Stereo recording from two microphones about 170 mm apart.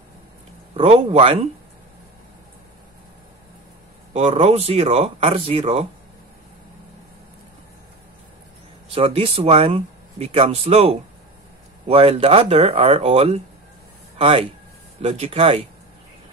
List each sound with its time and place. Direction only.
0.7 s speech: 35° right (ahead or behind)
4.1 s speech: 40° right (ahead or behind)
8.8 s speech: 35° right (ahead or behind)